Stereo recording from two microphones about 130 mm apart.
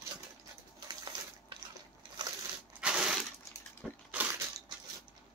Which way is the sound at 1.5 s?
40° right (ahead or behind).